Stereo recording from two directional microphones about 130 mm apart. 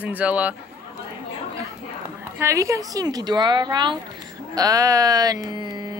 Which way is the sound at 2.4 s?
25° right (ahead or behind).